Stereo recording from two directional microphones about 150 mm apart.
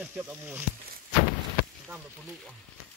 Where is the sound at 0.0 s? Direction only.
10° right (ahead or behind).